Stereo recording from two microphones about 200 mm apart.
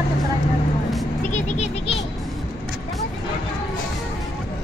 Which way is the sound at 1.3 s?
35° left (ahead or behind).